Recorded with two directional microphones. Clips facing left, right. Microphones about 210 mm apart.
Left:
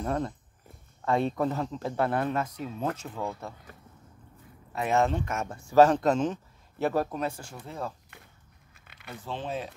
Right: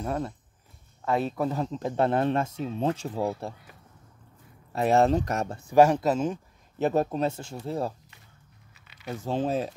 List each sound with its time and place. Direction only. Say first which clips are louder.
0.0 s speech: even; 5° right (ahead or behind); by 3.5 s 35° right (ahead or behind)
4.7 s speech: right 4 dB; 35° right (ahead or behind)
5.7 s speech: even; 10° right (ahead or behind)
6.8 s speech: right 3 dB; 25° right (ahead or behind)
8.1 s a sound: left 3 dB; 55° left (ahead or behind)
9.2 s speech: right 7 dB; 40° right (ahead or behind)